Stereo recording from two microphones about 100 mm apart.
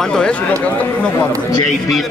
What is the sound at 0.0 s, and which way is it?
Speech, 10° left (ahead or behind).